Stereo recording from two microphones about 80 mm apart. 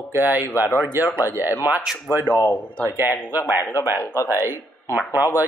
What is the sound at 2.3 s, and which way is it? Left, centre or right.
Speech, left.